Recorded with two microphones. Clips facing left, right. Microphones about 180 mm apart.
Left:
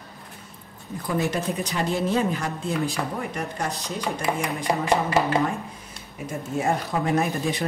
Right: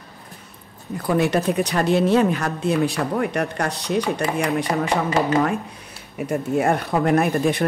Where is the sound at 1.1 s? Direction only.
70° right (ahead or behind).